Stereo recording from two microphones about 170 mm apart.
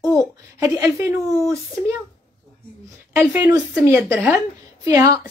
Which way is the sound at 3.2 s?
10° right (ahead or behind).